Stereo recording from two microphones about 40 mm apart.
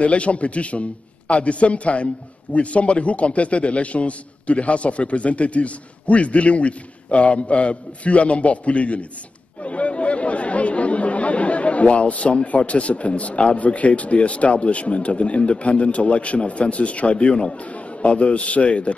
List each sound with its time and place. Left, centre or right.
0.0 s a man's voice: left